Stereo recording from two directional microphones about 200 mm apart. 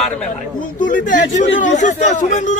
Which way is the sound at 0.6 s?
40° left (ahead or behind).